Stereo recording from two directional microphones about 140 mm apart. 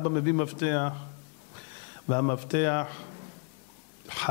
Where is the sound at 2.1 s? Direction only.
15° left (ahead or behind).